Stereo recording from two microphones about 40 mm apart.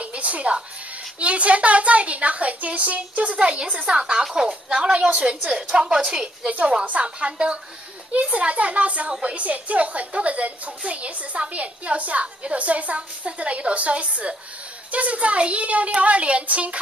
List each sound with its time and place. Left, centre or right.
0.0 s music: right
1.2 s a woman's voice: right